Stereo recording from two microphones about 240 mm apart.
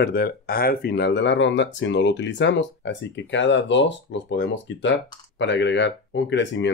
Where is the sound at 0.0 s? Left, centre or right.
Left.